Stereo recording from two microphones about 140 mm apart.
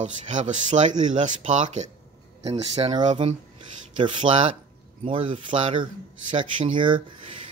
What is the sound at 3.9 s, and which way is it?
Speech, 35° right (ahead or behind).